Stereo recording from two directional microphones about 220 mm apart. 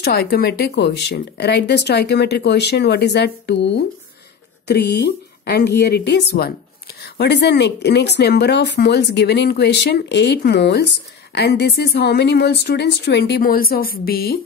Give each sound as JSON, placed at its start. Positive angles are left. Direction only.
{"t": 0.0, "sound": "speech", "side_deg": 45}